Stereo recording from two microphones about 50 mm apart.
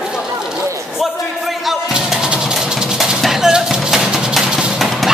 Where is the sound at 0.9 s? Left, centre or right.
Centre.